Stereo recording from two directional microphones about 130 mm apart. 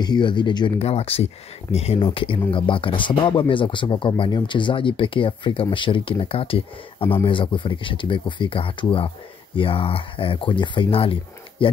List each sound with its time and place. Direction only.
0.0 s speech: 35° left (ahead or behind)
0.7 s speech: 50° left (ahead or behind)